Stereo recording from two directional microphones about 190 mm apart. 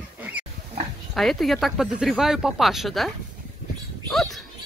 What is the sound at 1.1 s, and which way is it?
Speech, centre (ahead or behind).